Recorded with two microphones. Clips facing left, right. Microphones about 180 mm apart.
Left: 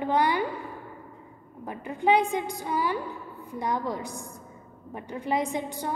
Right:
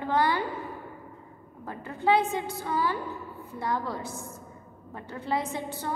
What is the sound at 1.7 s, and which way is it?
A woman's voice, 15° left (ahead or behind).